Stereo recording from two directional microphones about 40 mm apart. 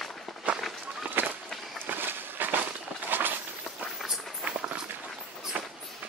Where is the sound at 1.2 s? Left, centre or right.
Right.